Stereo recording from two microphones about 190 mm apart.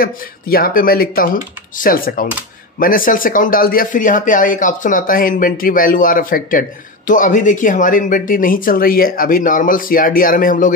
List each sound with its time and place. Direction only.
0.0 s speech: 50° left (ahead or behind)